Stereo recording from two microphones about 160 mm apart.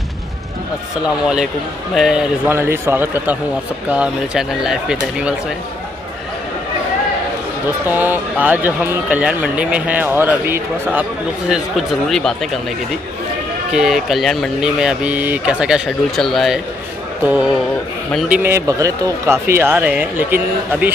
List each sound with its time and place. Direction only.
1.0 s speech: 5° right (ahead or behind)
2.5 s speech: 15° right (ahead or behind)
7.8 s speech: 10° right (ahead or behind)
13.7 s speech: centre (ahead or behind)